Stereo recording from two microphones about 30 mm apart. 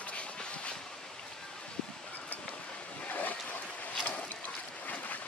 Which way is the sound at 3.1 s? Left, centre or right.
Left.